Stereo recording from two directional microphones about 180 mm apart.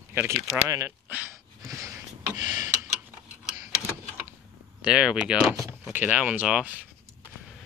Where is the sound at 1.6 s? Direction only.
15° right (ahead or behind).